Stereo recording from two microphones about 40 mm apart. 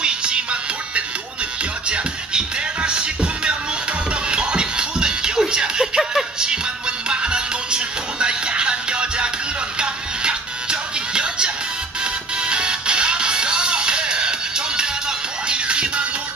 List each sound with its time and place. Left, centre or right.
0.0 s music: right